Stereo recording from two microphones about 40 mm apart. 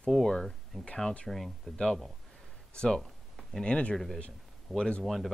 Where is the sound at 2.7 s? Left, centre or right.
Left.